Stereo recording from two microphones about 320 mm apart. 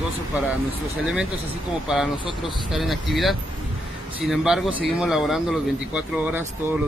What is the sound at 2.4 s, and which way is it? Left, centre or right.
A man's voice, centre.